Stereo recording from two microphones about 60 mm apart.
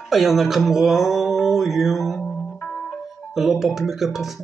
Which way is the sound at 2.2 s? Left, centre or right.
Centre.